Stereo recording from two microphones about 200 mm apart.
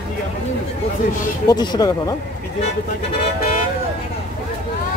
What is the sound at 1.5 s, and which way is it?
Speech, 20° left (ahead or behind).